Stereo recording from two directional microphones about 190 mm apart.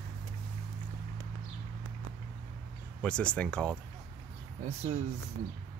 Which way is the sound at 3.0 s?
5° left (ahead or behind).